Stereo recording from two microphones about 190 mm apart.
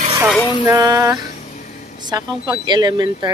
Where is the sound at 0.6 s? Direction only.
20° right (ahead or behind).